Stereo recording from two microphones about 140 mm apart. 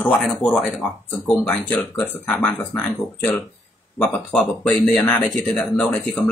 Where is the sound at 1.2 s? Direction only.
15° left (ahead or behind).